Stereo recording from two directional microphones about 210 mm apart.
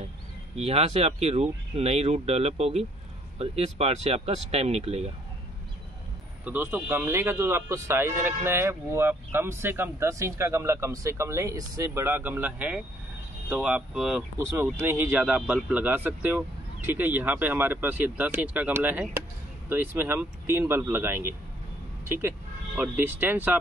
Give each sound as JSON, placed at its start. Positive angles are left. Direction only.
{"t": 0.6, "sound": "speech", "side_deg": -30}
{"t": 6.4, "sound": "speech", "side_deg": -10}